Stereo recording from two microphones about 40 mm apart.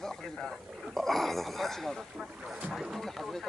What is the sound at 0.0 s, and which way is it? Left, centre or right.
Speech, centre.